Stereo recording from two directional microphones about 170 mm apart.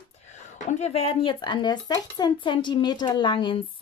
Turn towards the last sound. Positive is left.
turn(degrees=30)  # may be behind; listen again after turning